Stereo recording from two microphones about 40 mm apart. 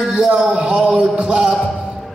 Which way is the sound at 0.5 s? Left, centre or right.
Right.